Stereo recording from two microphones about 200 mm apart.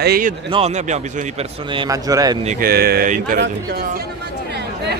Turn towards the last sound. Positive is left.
turn(degrees=-55)  # may be behind; listen again after turning